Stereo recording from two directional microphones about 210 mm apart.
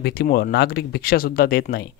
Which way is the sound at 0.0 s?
50° left (ahead or behind).